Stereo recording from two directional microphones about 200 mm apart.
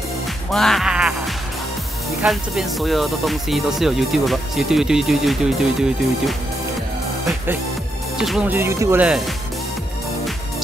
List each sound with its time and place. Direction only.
0.5 s speech: centre (ahead or behind)
8.2 s speech: 5° right (ahead or behind)